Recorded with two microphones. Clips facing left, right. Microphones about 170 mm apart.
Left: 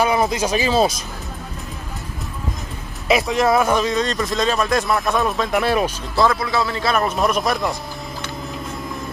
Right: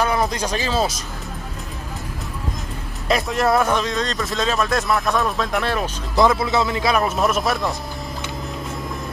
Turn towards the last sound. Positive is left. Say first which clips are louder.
# left 1 dB
turn(degrees=0)  # may be behind; listen again after turning